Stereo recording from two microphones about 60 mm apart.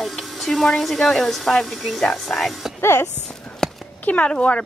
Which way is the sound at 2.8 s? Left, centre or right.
Left.